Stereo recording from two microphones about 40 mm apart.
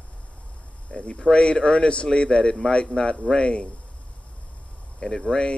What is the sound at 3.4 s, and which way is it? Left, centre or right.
Speech, left.